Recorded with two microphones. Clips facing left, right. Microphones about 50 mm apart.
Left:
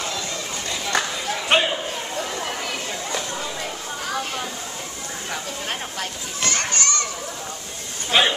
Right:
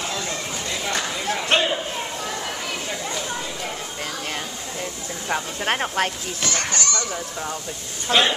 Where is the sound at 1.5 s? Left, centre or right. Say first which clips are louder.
Left 2 dB; centre.